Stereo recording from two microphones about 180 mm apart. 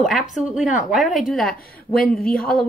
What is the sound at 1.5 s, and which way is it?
Speech, 55° left (ahead or behind).